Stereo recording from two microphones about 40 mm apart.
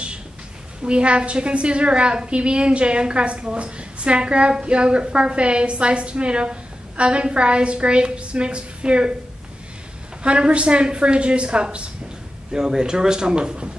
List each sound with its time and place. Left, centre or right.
0.8 s a woman's voice: right
10.2 s a woman's voice: right